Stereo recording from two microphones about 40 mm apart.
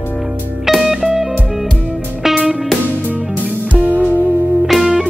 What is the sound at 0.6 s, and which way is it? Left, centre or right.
Music, centre.